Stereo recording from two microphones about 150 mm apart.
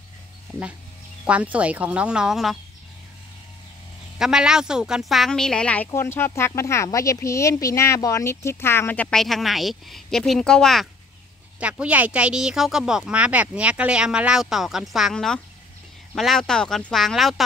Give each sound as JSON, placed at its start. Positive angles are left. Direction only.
{"t": 1.2, "sound": "speech", "side_deg": -10}
{"t": 4.2, "sound": "speech", "side_deg": -5}
{"t": 11.6, "sound": "speech", "side_deg": -10}